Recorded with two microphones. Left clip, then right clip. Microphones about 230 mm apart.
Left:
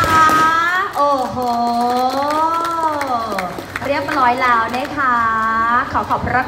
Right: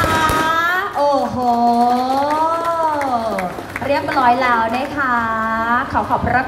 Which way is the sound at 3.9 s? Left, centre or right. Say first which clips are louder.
Right 1 dB; right.